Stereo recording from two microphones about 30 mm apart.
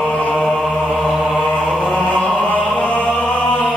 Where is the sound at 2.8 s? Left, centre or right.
Left.